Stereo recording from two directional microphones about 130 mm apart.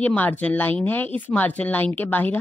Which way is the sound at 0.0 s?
10° left (ahead or behind).